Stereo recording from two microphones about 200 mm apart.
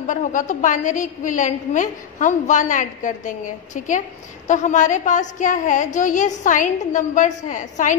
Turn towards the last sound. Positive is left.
turn(degrees=40)  # may be behind; listen again after turning